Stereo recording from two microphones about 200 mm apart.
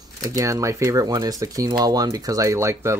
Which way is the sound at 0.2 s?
15° right (ahead or behind).